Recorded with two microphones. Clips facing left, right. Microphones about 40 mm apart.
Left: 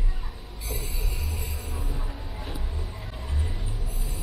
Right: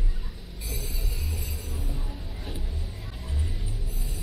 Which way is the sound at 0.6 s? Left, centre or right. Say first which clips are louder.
Left 2 dB; left.